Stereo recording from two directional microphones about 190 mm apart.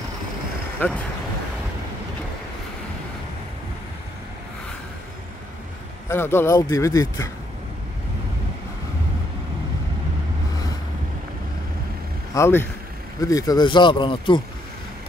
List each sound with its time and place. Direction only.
0.7 s speech: 5° left (ahead or behind)
6.0 s speech: 10° left (ahead or behind)
12.4 s speech: 15° left (ahead or behind)